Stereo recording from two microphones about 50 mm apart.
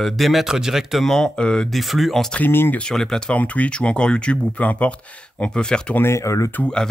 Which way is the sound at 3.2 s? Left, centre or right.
Left.